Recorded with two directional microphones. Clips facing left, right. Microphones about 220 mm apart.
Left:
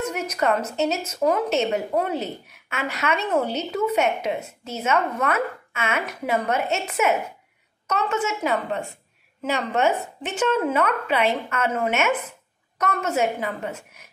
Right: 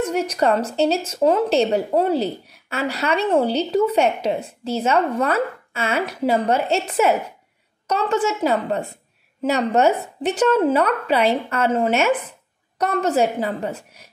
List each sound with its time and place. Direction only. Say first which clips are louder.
0.0 s a woman's voice: right 5 dB; 30° right (ahead or behind)